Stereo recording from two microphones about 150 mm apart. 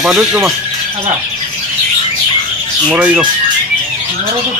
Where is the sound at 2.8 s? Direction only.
10° right (ahead or behind).